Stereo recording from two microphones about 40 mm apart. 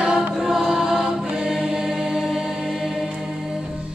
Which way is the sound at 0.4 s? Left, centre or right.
Centre.